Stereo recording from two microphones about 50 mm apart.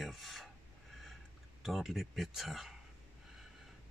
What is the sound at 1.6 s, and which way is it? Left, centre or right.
Speech, centre.